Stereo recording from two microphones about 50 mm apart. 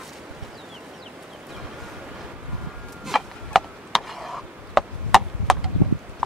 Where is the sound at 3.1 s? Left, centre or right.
Centre.